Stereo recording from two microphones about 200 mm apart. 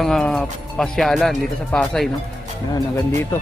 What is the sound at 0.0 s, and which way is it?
Speech, centre (ahead or behind).